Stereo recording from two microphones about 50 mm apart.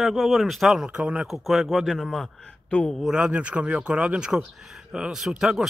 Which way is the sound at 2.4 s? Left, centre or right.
Left.